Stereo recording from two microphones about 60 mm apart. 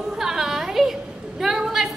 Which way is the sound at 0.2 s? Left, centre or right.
Centre.